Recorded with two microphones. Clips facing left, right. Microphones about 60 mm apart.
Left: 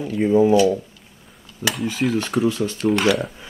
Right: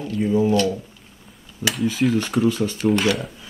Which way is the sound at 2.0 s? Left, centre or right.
Centre.